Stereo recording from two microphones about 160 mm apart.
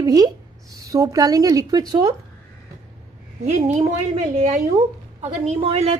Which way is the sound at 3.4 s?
45° right (ahead or behind).